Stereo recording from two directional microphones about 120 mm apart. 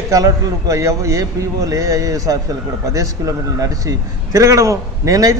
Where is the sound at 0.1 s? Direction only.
30° right (ahead or behind).